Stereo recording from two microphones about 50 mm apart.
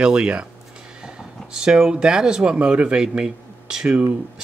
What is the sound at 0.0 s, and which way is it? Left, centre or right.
Speech, centre.